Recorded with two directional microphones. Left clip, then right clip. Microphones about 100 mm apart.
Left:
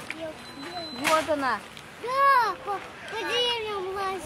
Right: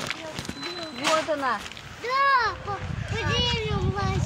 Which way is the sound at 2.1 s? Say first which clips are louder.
Left 1 dB; 5° right (ahead or behind).